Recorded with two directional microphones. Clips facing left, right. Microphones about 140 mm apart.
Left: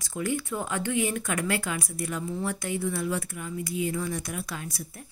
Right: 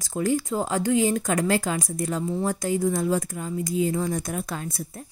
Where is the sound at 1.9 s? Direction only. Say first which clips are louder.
Right 5 dB; 25° right (ahead or behind).